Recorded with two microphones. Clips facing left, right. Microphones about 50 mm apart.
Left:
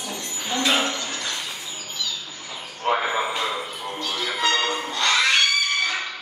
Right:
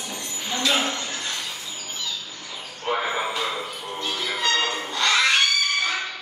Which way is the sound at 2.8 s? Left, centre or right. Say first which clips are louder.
Left 3 dB; left.